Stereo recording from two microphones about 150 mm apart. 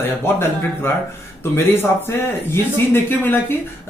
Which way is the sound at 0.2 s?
15° left (ahead or behind).